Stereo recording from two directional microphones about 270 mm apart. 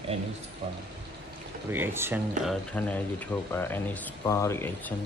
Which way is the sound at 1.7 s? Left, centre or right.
Centre.